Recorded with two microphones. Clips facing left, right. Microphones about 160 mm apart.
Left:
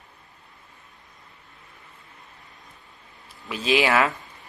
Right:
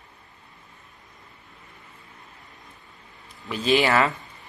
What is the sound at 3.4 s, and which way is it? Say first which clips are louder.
Speech: right 1 dB; centre (ahead or behind).